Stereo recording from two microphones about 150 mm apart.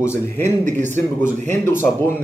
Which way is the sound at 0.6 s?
55° right (ahead or behind).